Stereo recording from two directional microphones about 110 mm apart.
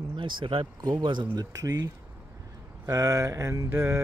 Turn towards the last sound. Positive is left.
turn(degrees=-25)  # may be behind; listen again after turning